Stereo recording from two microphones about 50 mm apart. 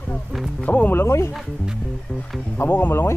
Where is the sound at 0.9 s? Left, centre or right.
Left.